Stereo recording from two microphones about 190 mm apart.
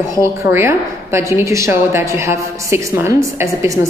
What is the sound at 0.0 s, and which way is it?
A woman's voice, 15° right (ahead or behind).